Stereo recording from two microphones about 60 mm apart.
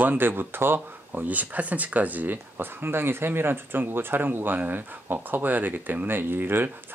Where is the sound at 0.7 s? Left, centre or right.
Right.